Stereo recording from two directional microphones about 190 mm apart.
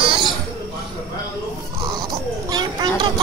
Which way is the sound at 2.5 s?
20° right (ahead or behind).